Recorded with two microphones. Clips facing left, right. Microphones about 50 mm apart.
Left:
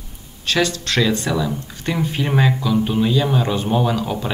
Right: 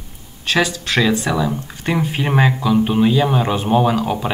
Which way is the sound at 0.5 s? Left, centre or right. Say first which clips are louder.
Right 2 dB; centre.